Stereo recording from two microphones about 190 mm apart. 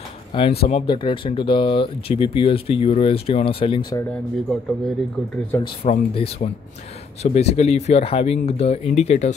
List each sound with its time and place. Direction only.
0.3 s speech: 30° left (ahead or behind)
4.5 s speech: centre (ahead or behind)
5.5 s speech: 15° left (ahead or behind)
5.9 s speech: 35° left (ahead or behind)